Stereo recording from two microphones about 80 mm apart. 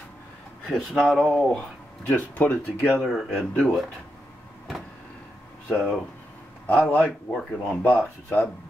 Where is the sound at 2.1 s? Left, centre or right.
Left.